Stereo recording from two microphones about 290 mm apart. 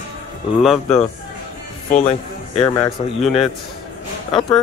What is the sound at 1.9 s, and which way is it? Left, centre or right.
A man's voice, left.